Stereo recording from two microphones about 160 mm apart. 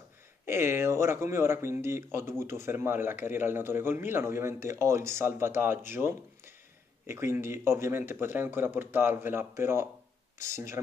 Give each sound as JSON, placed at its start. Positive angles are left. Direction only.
{"t": 0.5, "sound": "speech", "side_deg": -15}